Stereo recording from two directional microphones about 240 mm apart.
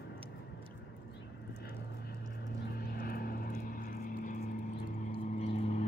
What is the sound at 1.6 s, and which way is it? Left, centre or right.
Vehicle, left.